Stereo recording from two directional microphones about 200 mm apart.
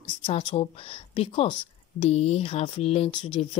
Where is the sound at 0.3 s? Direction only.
25° left (ahead or behind).